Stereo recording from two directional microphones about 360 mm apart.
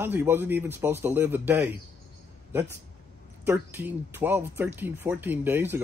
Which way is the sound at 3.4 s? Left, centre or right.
Centre.